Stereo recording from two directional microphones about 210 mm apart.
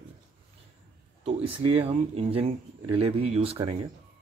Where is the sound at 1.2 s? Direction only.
25° right (ahead or behind).